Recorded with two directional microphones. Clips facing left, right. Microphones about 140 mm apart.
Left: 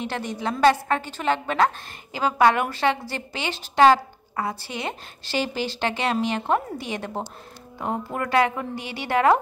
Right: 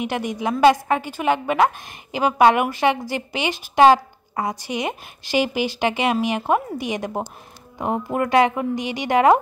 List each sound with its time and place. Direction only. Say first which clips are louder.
0.0 s a woman's voice: right 4 dB; 10° right (ahead or behind)